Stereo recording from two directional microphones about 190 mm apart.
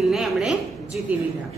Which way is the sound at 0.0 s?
Centre (ahead or behind).